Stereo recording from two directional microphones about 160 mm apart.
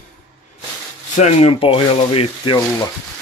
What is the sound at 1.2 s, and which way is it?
Speech, 40° left (ahead or behind).